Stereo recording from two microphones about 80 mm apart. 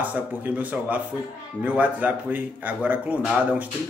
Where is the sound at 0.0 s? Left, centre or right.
Right.